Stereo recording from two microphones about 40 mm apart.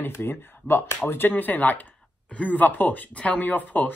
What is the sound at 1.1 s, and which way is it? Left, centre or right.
Speech, left.